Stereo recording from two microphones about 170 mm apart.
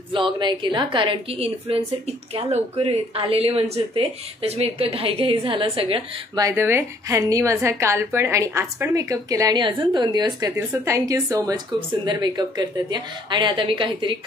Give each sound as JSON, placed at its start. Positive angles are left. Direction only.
{"t": 0.1, "sound": "a woman's voice", "side_deg": -30}
{"t": 6.4, "sound": "a woman's voice", "side_deg": -15}